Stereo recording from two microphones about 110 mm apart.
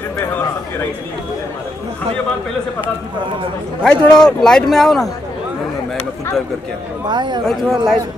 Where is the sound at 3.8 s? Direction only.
5° left (ahead or behind).